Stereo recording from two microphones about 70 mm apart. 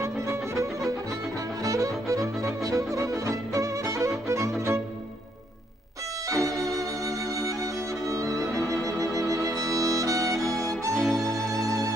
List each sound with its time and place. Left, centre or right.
0.0 s music: right
1.6 s music: right
6.2 s music: right
11.0 s violin: centre
11.2 s music: right